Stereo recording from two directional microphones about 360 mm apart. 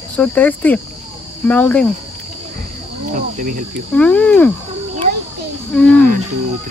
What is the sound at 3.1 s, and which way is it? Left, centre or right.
Cricket, right.